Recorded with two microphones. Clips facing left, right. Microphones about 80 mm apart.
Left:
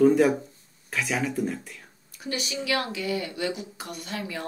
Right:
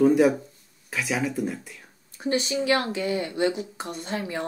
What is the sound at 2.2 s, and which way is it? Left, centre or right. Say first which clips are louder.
Speech: right 6 dB; right.